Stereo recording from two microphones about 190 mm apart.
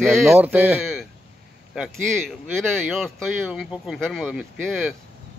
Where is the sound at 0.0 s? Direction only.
Centre (ahead or behind).